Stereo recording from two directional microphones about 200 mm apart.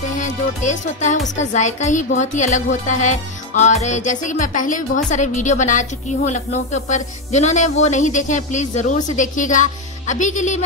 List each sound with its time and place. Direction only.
0.2 s speech: 35° left (ahead or behind)